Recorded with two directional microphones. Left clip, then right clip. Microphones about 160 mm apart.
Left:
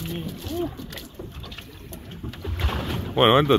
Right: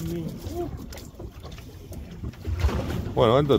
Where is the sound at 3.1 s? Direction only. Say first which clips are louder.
Left 3 dB; 15° right (ahead or behind).